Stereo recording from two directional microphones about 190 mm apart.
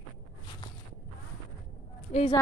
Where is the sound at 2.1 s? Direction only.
30° left (ahead or behind).